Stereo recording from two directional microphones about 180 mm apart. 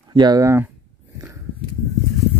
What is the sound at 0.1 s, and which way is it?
Speech, 25° right (ahead or behind).